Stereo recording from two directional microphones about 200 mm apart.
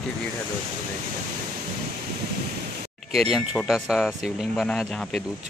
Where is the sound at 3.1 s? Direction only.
Centre (ahead or behind).